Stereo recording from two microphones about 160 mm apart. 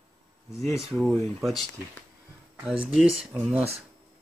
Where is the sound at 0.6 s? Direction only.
Centre (ahead or behind).